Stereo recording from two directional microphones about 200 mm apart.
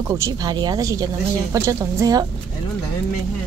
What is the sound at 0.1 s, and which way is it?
Speech, 20° right (ahead or behind).